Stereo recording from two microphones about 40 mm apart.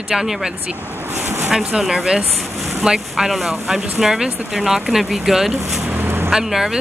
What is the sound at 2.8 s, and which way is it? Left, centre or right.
Speech, right.